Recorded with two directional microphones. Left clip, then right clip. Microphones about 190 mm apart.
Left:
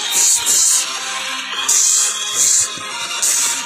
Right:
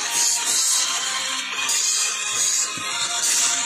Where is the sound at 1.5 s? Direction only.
40° left (ahead or behind).